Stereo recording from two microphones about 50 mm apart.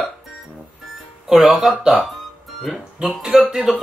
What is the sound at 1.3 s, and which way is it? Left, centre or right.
Speech, centre.